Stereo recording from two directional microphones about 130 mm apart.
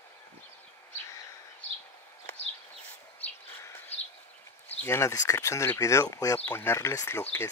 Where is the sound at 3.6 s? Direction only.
20° left (ahead or behind).